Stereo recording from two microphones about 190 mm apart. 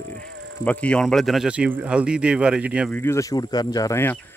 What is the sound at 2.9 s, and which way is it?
Speech, 15° left (ahead or behind).